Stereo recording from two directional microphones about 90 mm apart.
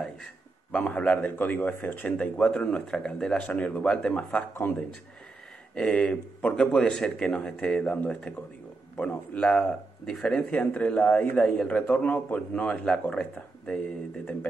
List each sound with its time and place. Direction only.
0.0 s a man's voice: 5° left (ahead or behind)
4.6 s a man's voice: 20° left (ahead or behind)
5.8 s a man's voice: 10° left (ahead or behind)